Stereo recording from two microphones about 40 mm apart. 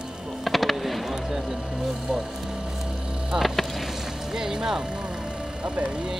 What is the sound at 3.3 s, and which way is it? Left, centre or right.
Speech, centre.